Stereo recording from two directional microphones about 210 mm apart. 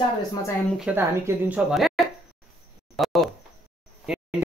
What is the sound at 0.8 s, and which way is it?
Speech, 10° right (ahead or behind).